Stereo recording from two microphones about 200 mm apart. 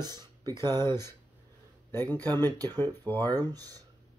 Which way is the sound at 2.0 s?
20° right (ahead or behind).